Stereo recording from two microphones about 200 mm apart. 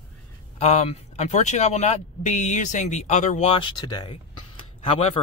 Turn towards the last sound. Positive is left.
turn(degrees=35)  # may be behind; listen again after turning